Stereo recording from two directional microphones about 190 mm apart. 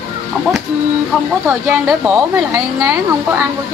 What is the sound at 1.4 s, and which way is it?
A woman's voice, 10° right (ahead or behind).